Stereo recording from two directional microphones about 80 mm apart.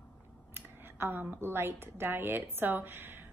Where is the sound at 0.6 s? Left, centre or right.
Right.